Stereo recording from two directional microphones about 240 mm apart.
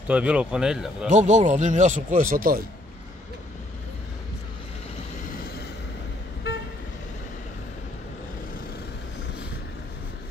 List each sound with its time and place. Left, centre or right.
0.1 s speech: centre
1.0 s speech: right